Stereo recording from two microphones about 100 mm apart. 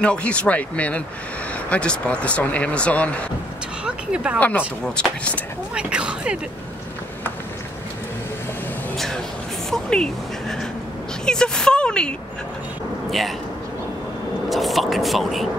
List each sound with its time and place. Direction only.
0.0 s speech: 10° left (ahead or behind)
3.8 s a sound: 10° right (ahead or behind)
4.4 s speech: 15° left (ahead or behind)
5.8 s speech: 10° right (ahead or behind)
8.9 s speech: 5° left (ahead or behind)
11.2 s speech: 5° left (ahead or behind)
14.5 s speech: centre (ahead or behind)